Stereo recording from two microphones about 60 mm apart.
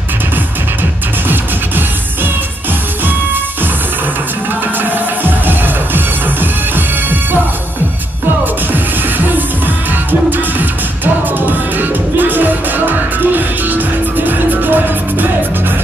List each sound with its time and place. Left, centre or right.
4.9 s music: right
11.3 s music: right